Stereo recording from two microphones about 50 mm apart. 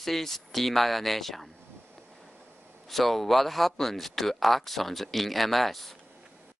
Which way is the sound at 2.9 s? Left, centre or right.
Centre.